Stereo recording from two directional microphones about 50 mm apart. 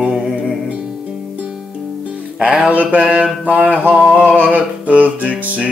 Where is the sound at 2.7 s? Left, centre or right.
Right.